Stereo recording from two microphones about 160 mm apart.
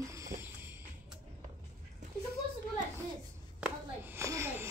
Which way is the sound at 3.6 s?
15° right (ahead or behind).